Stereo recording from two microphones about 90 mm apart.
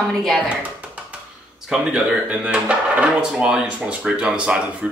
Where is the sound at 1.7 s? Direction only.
10° right (ahead or behind).